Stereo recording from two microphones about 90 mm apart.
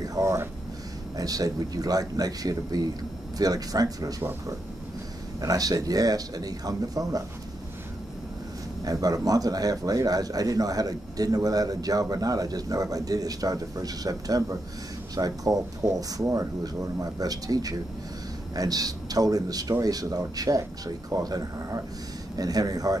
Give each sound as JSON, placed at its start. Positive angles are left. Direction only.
{"t": 0.0, "sound": "a sound", "side_deg": -40}
{"t": 1.1, "sound": "speech", "side_deg": -45}
{"t": 5.4, "sound": "speech", "side_deg": -40}
{"t": 8.8, "sound": "speech", "side_deg": -45}